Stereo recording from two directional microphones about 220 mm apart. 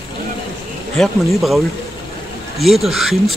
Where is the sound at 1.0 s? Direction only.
Centre (ahead or behind).